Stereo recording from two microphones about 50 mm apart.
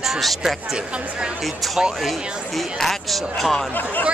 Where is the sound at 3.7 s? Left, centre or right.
Left.